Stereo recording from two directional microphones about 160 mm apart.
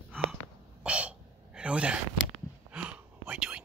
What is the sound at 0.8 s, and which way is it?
Throat clearing, 5° right (ahead or behind).